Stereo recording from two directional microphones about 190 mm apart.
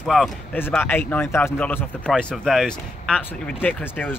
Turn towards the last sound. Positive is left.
turn(degrees=10)  # may be behind; listen again after turning